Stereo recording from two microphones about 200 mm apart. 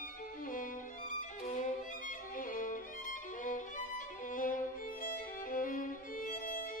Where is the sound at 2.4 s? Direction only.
45° left (ahead or behind).